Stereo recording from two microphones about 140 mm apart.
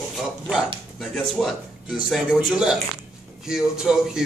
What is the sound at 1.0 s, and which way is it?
A man's voice, centre (ahead or behind).